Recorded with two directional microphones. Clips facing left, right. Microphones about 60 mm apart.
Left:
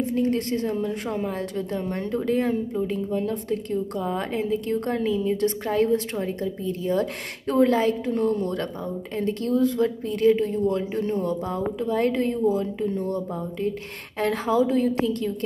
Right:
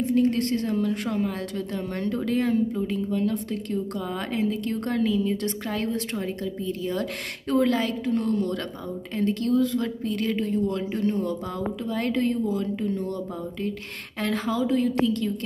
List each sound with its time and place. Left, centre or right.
0.5 s a woman's voice: centre